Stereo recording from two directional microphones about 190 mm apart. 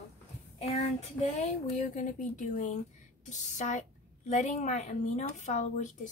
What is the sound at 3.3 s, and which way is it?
A woman's voice, 40° left (ahead or behind).